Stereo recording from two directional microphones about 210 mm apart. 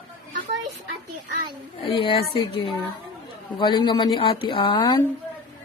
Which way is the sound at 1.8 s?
25° left (ahead or behind).